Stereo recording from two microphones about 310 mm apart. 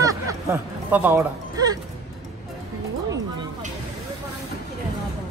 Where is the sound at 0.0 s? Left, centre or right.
Centre.